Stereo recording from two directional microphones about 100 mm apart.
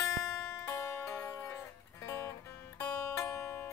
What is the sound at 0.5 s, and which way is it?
Music, 30° left (ahead or behind).